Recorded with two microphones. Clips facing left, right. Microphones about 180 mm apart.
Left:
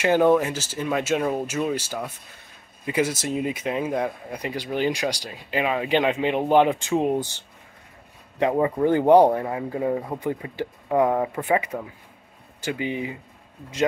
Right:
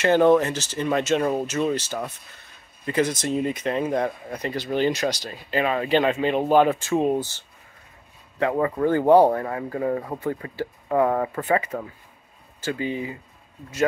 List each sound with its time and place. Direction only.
0.0 s speech: 10° left (ahead or behind)